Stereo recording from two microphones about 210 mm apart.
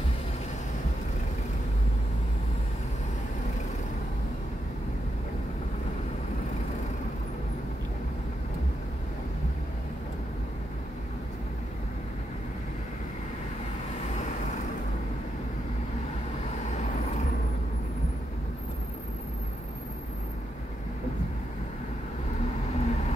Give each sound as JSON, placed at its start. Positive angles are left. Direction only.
{"t": 22.8, "sound": "vehicle", "side_deg": 30}